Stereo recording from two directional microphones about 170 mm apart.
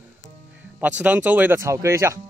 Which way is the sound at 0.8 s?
10° right (ahead or behind).